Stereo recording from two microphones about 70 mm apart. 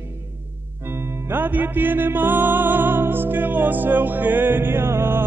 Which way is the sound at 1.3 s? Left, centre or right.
Right.